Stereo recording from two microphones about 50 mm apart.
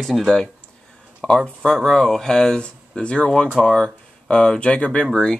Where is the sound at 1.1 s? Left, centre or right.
Left.